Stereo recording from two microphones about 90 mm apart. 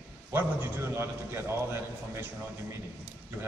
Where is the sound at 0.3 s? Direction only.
25° right (ahead or behind).